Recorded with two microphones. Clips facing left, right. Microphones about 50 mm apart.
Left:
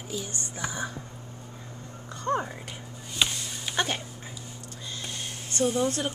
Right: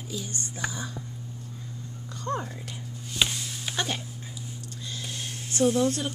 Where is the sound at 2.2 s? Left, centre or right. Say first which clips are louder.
Left 3 dB; left.